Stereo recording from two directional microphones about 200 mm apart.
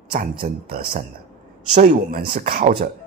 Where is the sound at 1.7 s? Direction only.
40° right (ahead or behind).